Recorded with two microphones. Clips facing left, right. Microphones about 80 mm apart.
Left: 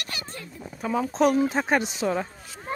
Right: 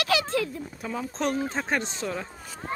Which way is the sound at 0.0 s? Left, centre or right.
Right.